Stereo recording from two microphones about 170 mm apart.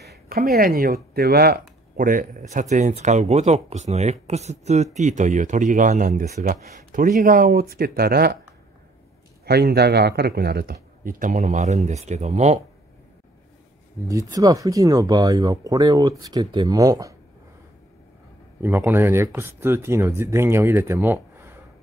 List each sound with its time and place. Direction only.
0.3 s speech: 65° right (ahead or behind)
9.5 s speech: 70° right (ahead or behind); by 12.5 s 40° right (ahead or behind)
14.0 s speech: 20° right (ahead or behind)
18.6 s speech: 10° right (ahead or behind)